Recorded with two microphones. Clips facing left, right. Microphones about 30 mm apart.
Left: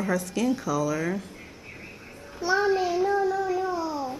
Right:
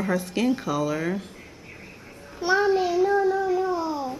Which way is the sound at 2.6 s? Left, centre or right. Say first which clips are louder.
Right 2 dB; centre.